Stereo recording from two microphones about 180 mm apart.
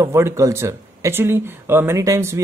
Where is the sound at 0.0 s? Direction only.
15° right (ahead or behind).